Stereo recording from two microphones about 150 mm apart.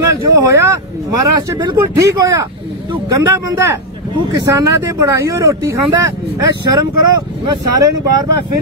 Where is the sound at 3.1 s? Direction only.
20° right (ahead or behind).